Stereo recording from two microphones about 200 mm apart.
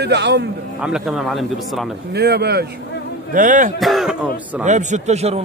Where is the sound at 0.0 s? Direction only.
55° right (ahead or behind).